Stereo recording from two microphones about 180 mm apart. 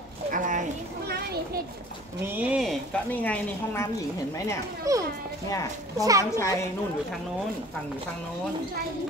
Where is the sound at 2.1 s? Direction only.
10° right (ahead or behind); by 3.9 s 10° left (ahead or behind).